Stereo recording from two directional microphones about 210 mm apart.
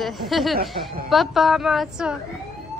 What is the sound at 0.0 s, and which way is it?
Speech, centre (ahead or behind).